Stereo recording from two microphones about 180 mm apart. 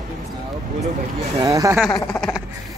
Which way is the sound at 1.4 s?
20° right (ahead or behind).